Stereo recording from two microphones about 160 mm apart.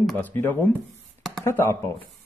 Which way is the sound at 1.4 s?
15° left (ahead or behind).